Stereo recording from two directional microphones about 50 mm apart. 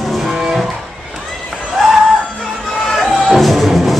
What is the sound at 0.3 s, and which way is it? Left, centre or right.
Music, centre.